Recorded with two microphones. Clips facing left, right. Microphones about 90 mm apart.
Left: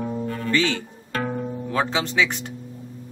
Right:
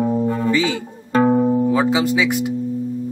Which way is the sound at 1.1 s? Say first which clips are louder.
Right 12 dB; 20° right (ahead or behind).